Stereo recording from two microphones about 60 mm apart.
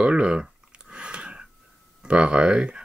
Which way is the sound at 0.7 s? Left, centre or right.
Centre.